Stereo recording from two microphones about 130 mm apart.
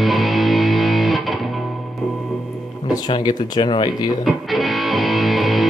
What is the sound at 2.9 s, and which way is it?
Speech, 30° left (ahead or behind).